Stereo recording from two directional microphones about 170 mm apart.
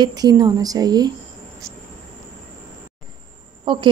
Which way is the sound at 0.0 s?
25° right (ahead or behind).